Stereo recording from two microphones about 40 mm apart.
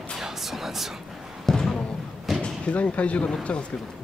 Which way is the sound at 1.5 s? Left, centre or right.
Centre.